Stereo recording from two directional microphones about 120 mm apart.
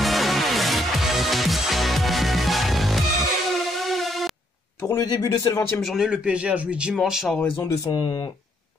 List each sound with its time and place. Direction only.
0.0 s music: centre (ahead or behind)
4.8 s speech: 30° left (ahead or behind)
5.8 s speech: 5° right (ahead or behind)
7.5 s speech: 30° left (ahead or behind)